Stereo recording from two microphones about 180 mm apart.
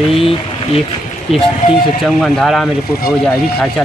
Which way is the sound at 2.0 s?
Centre (ahead or behind).